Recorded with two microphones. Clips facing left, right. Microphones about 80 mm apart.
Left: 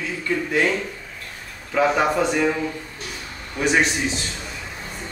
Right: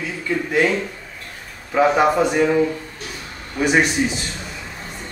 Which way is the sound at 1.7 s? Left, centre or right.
Centre.